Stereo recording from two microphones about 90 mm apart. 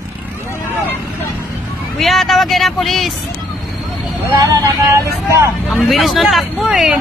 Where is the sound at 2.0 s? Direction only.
Centre (ahead or behind).